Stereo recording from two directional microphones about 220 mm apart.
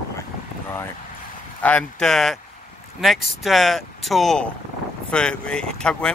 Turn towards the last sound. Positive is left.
turn(degrees=5)  # may be behind; listen again after turning